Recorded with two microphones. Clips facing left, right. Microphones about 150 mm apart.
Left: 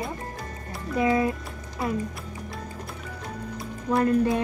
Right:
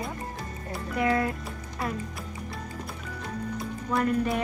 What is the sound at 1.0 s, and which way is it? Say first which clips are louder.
Speech: left 3 dB; 20° left (ahead or behind).